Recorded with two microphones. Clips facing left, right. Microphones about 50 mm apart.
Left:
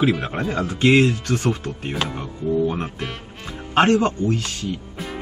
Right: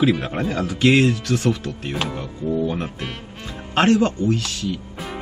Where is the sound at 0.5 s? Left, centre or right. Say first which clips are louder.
Even; left.